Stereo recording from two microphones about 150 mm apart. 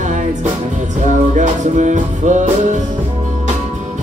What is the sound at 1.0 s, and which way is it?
Music, 55° right (ahead or behind).